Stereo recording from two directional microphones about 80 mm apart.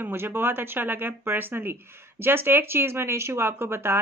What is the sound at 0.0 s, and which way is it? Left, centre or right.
Speech, right.